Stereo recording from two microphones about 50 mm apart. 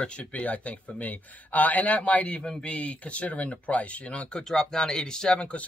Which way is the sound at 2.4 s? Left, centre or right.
Centre.